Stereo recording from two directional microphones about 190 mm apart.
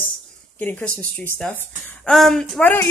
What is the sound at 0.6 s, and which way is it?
A woman's voice, 10° left (ahead or behind).